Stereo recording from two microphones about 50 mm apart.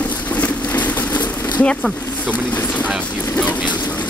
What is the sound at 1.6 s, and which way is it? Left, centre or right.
Speech, left.